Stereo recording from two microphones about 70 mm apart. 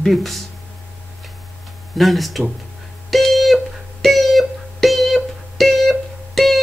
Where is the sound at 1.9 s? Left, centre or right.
Centre.